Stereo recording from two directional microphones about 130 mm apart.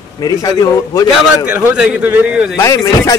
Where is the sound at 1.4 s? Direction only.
10° right (ahead or behind).